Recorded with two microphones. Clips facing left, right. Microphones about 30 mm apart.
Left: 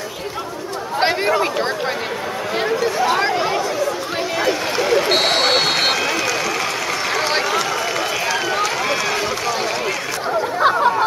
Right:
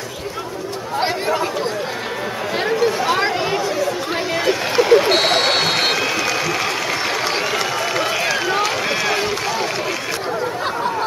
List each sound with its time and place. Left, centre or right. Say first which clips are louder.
0.9 s chatter: left 3 dB; left
2.6 s chatter: right 1 dB; centre
4.4 s a sound: right 2 dB; centre
7.2 s run: left 2 dB; centre
7.5 s run: even; centre
10.6 s a sound: left 7 dB; left